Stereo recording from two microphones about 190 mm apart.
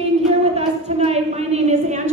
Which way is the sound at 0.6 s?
35° right (ahead or behind).